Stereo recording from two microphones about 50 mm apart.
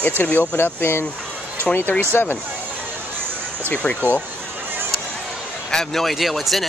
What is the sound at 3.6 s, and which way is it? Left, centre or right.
Speech, left.